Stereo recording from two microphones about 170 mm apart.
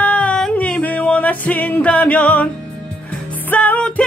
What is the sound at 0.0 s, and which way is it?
Music, 10° left (ahead or behind).